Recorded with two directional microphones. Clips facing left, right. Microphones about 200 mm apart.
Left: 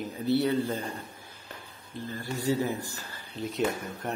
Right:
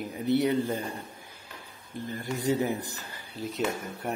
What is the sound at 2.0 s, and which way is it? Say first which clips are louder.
A man's voice: right 1 dB; 15° right (ahead or behind).